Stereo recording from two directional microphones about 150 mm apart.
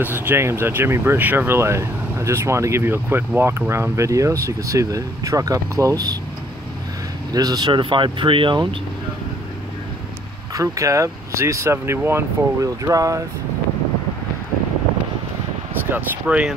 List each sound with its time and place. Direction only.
0.0 s speech: 10° right (ahead or behind)
7.3 s speech: 25° right (ahead or behind)
10.5 s speech: 20° right (ahead or behind)
15.8 s speech: 10° right (ahead or behind)